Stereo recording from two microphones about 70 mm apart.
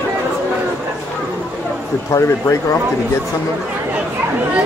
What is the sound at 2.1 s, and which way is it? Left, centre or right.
Speech, left.